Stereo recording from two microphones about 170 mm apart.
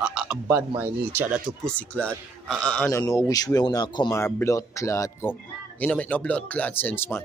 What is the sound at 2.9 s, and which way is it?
Speech, 20° left (ahead or behind).